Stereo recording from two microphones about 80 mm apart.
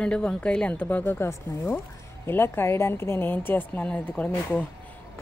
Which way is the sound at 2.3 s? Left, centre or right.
Left.